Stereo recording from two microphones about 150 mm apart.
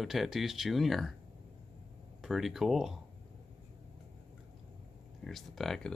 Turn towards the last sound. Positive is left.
turn(degrees=0)  # may be behind; listen again after turning